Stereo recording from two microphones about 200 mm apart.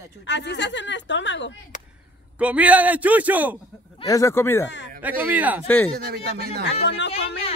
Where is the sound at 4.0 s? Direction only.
15° left (ahead or behind).